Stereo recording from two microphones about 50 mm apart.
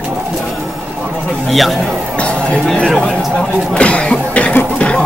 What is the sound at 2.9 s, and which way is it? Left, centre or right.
Speech, centre.